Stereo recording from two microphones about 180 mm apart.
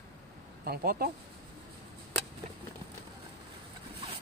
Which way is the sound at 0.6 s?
60° right (ahead or behind).